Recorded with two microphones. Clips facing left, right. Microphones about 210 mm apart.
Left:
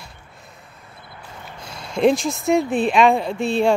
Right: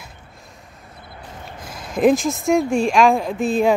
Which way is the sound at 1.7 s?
50° right (ahead or behind).